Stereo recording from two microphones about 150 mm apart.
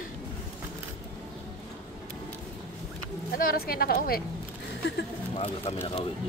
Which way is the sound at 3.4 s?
75° left (ahead or behind).